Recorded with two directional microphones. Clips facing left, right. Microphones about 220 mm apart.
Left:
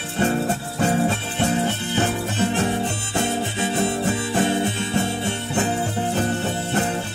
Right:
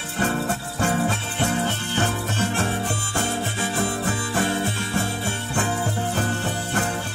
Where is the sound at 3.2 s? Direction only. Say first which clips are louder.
Left 4 dB; 20° left (ahead or behind).